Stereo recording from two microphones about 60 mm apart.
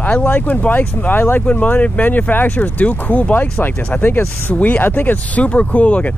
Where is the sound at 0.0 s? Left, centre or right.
Centre.